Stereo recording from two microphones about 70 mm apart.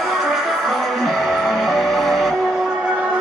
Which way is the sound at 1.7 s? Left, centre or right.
Centre.